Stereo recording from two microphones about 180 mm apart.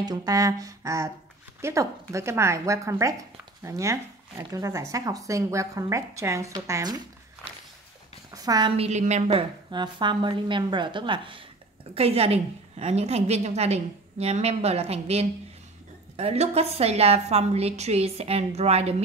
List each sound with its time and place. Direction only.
0.0 s a woman's voice: 20° right (ahead or behind)
8.3 s a sound: 20° right (ahead or behind)
8.7 s a woman's voice: 40° right (ahead or behind)